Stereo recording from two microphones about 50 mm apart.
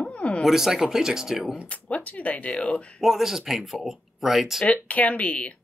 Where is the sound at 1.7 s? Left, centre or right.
Left.